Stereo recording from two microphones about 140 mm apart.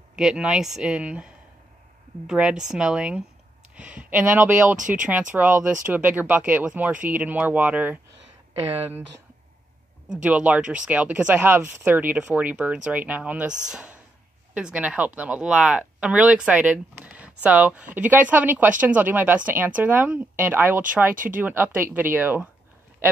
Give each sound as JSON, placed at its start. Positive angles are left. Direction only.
{"t": 0.1, "sound": "speech", "side_deg": -5}
{"t": 4.7, "sound": "speech", "side_deg": -65}
{"t": 5.3, "sound": "speech", "side_deg": -10}
{"t": 10.2, "sound": "speech", "side_deg": -10}